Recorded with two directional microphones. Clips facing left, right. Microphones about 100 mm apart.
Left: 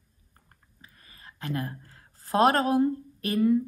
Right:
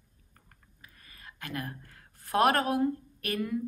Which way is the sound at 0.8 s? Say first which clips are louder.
Left 1 dB; 30° left (ahead or behind).